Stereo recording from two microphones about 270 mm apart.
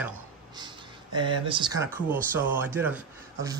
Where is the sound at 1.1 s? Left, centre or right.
Centre.